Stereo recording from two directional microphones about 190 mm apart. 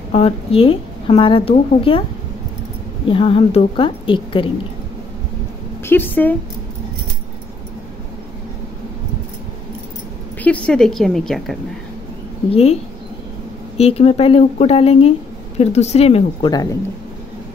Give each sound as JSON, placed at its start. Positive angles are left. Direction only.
{"t": 0.1, "sound": "a woman's voice", "side_deg": 30}
{"t": 3.1, "sound": "a woman's voice", "side_deg": 30}
{"t": 5.9, "sound": "speech", "side_deg": 10}
{"t": 10.4, "sound": "a woman's voice", "side_deg": 5}
{"t": 12.4, "sound": "a woman's voice", "side_deg": 30}
{"t": 13.7, "sound": "a woman's voice", "side_deg": 35}